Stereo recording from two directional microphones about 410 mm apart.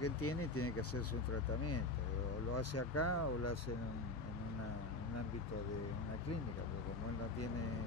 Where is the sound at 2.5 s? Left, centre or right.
Left.